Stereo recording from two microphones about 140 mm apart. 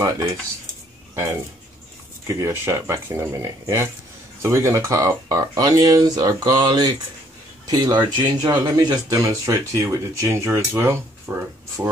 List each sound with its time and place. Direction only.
1.1 s speech: 20° right (ahead or behind)